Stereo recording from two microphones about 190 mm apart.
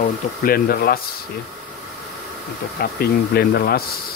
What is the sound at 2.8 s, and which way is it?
Speech, 55° left (ahead or behind).